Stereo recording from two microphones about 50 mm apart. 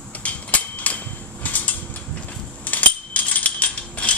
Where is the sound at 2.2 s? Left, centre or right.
Left.